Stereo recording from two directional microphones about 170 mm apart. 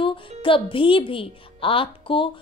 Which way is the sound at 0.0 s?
30° left (ahead or behind).